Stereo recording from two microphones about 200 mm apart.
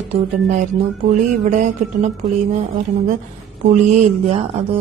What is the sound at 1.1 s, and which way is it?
A woman's voice, 35° right (ahead or behind).